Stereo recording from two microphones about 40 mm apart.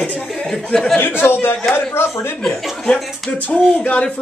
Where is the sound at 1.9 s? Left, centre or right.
Left.